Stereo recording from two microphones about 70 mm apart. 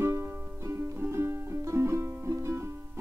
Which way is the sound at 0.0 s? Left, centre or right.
Right.